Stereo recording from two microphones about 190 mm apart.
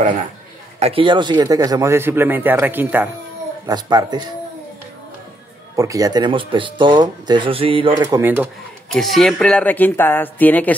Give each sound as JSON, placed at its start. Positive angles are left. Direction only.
{"t": 0.7, "sound": "a man's voice", "side_deg": -30}
{"t": 3.6, "sound": "speech", "side_deg": -20}
{"t": 5.8, "sound": "speech", "side_deg": -15}
{"t": 8.0, "sound": "a man's voice", "side_deg": -10}
{"t": 8.9, "sound": "speech", "side_deg": 0}